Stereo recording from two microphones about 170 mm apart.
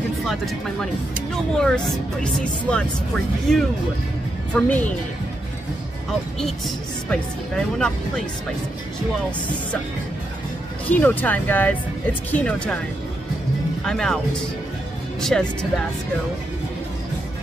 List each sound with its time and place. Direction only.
0.3 s speech: centre (ahead or behind)
2.7 s speech: 5° left (ahead or behind)
7.1 s speech: 5° left (ahead or behind)
10.9 s speech: 10° left (ahead or behind)
13.8 s speech: 5° left (ahead or behind)